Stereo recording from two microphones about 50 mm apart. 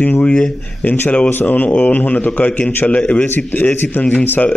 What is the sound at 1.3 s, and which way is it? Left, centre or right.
Speech, left.